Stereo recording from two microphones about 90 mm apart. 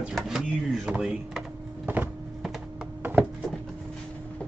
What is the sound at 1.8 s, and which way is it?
Vehicle, 20° right (ahead or behind).